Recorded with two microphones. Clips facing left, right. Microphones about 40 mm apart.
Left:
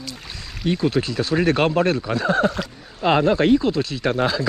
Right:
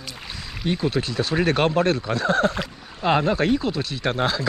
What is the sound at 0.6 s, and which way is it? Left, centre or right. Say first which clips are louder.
Speech: left 3 dB; centre.